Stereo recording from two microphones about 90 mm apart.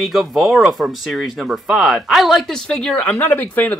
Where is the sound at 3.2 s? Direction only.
20° left (ahead or behind).